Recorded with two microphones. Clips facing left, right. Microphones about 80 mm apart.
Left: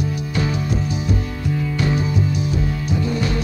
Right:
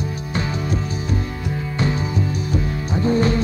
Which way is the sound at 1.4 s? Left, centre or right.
Right.